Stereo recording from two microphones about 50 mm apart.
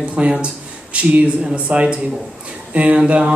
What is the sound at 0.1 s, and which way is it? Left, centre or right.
A man's voice, right.